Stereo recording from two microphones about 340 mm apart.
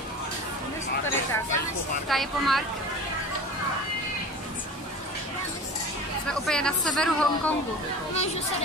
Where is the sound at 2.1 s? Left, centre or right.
Centre.